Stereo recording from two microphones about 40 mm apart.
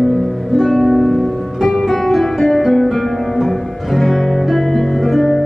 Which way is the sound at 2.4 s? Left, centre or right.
Centre.